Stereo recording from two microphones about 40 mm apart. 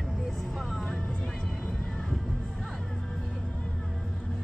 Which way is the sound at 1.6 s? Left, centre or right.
Left.